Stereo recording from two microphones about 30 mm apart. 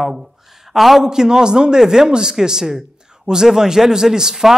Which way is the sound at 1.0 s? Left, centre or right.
Centre.